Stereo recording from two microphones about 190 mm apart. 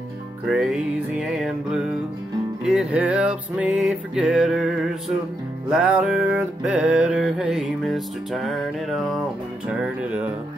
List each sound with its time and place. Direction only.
0.5 s music: 5° right (ahead or behind)